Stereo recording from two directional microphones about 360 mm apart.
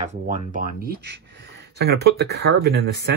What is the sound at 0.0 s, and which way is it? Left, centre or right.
Speech, centre.